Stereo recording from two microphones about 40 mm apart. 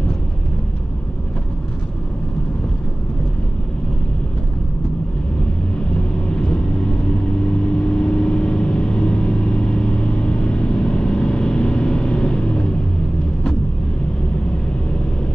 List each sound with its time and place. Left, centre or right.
5.8 s vehicle: left